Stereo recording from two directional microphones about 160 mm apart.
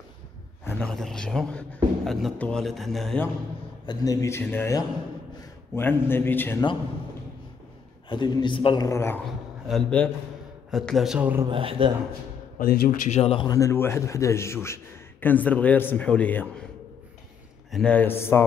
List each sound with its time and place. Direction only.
0.7 s a man's voice: 5° left (ahead or behind)
3.8 s a man's voice: 25° left (ahead or behind)
8.1 s a man's voice: 30° left (ahead or behind)
8.8 s a man's voice: 15° left (ahead or behind)
9.7 s a man's voice: 5° left (ahead or behind)
11.4 s speech: 30° right (ahead or behind)
12.5 s a man's voice: 65° left (ahead or behind)
13.2 s speech: 35° left (ahead or behind)
13.5 s a man's voice: 20° left (ahead or behind)
17.6 s a man's voice: 5° left (ahead or behind)